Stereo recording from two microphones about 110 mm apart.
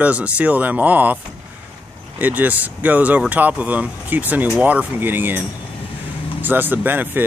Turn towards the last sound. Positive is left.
turn(degrees=-15)  # may be behind; listen again after turning